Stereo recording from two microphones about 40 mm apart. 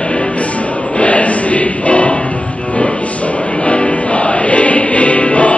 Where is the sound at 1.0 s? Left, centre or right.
Left.